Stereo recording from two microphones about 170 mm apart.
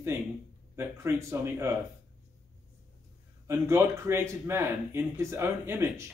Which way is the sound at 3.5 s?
15° right (ahead or behind).